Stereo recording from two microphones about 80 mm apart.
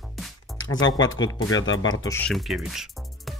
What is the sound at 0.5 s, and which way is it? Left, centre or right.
Speech, left.